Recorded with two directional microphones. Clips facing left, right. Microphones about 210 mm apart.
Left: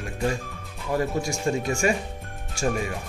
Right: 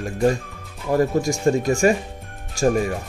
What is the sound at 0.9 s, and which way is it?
Speech, 45° right (ahead or behind).